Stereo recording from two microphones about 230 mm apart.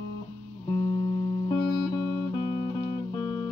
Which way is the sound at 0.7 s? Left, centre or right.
Centre.